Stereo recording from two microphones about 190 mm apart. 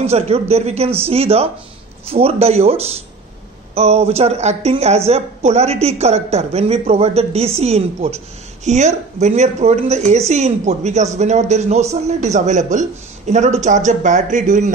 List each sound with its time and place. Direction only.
0.0 s a woman's voice: 35° right (ahead or behind)